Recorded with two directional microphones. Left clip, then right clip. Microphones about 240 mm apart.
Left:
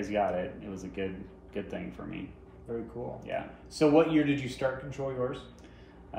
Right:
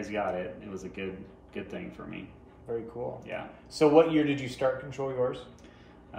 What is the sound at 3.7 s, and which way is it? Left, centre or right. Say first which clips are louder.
Speech: right 2 dB; centre.